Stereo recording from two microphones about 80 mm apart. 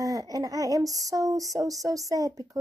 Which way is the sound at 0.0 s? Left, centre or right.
Right.